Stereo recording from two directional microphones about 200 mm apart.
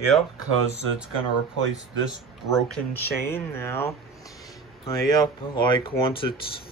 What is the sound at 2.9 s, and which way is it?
Speech, 10° left (ahead or behind).